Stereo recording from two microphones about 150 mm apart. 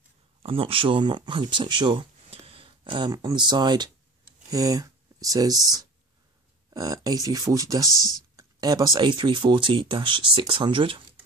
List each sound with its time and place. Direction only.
0.4 s speech: 35° right (ahead or behind)